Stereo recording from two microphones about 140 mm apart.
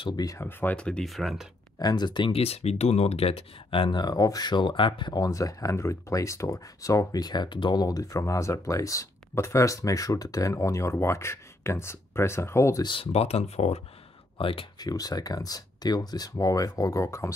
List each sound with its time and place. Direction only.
0.0 s speech: 30° left (ahead or behind); by 1.5 s centre (ahead or behind)
1.8 s speech: 30° left (ahead or behind)
12.8 s speech: 40° left (ahead or behind)
14.4 s speech: 40° left (ahead or behind)
14.9 s speech: 25° left (ahead or behind)